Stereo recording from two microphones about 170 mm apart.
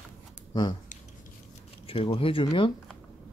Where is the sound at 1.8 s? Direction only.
35° left (ahead or behind).